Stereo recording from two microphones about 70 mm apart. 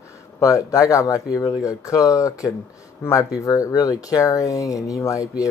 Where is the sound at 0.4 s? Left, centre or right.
Left.